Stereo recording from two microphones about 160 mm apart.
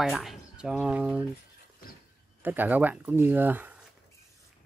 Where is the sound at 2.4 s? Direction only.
10° right (ahead or behind).